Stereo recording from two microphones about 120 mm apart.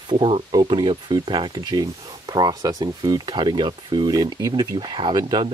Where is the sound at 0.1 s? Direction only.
45° right (ahead or behind).